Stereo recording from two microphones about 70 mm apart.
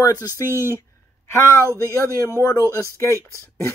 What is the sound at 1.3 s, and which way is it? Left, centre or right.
Speech, left.